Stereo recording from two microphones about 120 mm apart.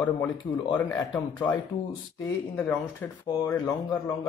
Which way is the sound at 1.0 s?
30° left (ahead or behind).